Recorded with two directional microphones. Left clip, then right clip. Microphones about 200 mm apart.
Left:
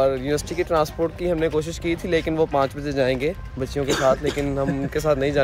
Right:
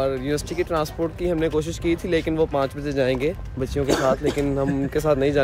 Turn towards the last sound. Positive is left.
turn(degrees=-15)  # may be behind; listen again after turning